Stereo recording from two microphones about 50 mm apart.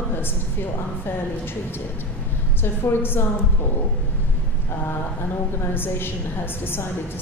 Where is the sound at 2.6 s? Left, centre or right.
Left.